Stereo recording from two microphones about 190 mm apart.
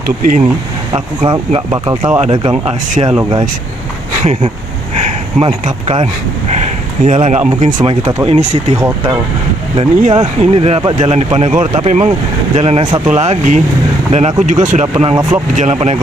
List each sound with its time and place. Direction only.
0.0 s speech: 45° right (ahead or behind)
0.9 s speech: 25° right (ahead or behind)
4.2 s speech: 35° right (ahead or behind)
7.2 s speech: 35° right (ahead or behind)
8.7 s speech: 15° right (ahead or behind)
9.8 s speech: 35° right (ahead or behind)